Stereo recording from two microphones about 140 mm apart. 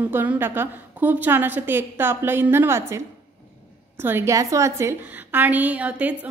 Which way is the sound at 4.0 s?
15° right (ahead or behind).